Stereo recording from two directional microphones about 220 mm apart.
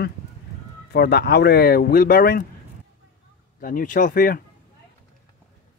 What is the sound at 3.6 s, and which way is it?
Speech, 40° left (ahead or behind).